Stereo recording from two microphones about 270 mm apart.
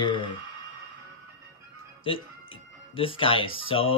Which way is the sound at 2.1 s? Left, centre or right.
Centre.